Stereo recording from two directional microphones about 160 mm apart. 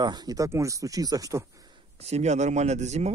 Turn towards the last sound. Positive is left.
turn(degrees=-45)  # may be behind; listen again after turning